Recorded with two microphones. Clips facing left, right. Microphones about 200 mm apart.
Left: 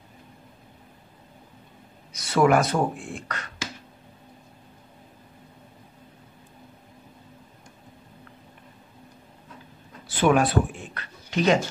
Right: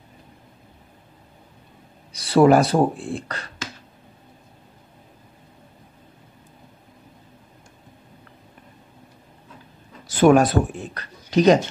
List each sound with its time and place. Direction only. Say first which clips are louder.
2.1 s speech: right 5 dB; 35° right (ahead or behind)
10.0 s speech: right 6 dB; 45° right (ahead or behind)